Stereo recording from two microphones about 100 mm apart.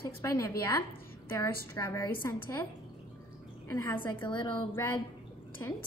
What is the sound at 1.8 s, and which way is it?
Speech, 25° left (ahead or behind).